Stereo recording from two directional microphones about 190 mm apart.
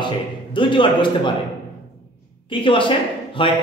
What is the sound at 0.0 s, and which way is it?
A man's voice, 25° left (ahead or behind).